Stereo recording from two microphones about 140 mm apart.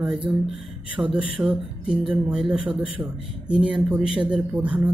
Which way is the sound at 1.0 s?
20° right (ahead or behind).